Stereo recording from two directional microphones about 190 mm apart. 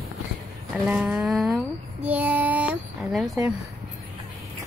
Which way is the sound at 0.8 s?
5° right (ahead or behind).